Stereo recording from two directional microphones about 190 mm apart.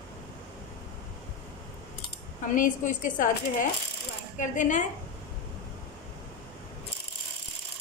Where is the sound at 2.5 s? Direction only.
45° left (ahead or behind).